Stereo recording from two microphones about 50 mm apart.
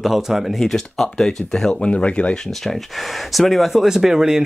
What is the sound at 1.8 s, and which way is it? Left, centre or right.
Speech, left.